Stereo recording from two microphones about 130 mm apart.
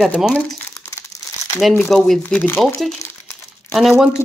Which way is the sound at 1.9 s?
Centre (ahead or behind).